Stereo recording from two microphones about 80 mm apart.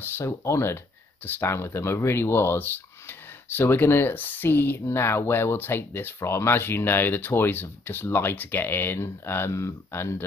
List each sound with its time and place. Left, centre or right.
0.0 s speech: left